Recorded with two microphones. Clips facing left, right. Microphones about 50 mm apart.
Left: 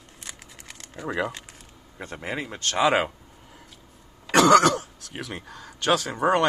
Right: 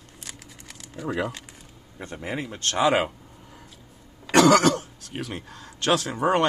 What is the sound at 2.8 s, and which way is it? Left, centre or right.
Speech, left.